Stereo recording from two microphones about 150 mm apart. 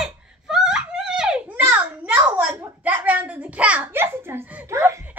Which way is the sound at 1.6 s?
10° right (ahead or behind).